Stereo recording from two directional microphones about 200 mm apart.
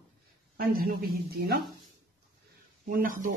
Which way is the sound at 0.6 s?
50° right (ahead or behind).